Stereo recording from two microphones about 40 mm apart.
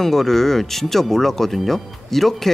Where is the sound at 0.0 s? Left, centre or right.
Centre.